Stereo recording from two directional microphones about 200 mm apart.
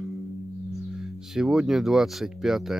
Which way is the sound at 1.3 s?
5° right (ahead or behind).